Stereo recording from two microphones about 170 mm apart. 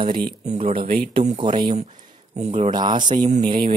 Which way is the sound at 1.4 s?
30° right (ahead or behind).